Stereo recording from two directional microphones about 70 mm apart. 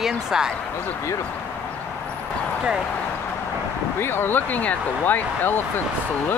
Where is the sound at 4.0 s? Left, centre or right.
Left.